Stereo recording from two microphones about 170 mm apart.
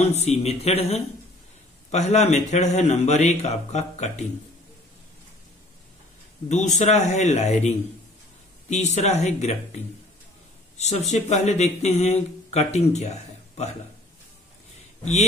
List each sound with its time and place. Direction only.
0.0 s speech: 40° left (ahead or behind)
6.5 s speech: 40° left (ahead or behind)
10.8 s speech: 40° left (ahead or behind)